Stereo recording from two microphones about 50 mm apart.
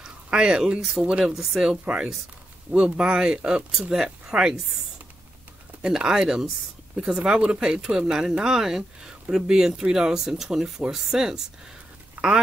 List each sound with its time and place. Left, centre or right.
0.0 s a sound: centre
0.7 s speech: centre
1.7 s speech: right
5.8 s speech: centre